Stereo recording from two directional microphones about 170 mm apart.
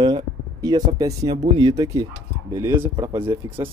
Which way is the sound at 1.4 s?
25° right (ahead or behind).